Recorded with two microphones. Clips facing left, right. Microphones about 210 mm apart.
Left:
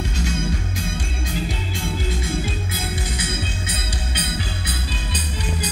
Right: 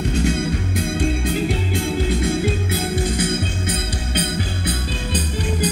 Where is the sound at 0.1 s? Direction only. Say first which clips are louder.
Right 5 dB; 55° right (ahead or behind).